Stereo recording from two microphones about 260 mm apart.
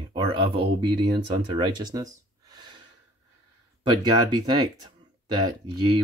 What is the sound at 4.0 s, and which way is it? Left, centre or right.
Speech, centre.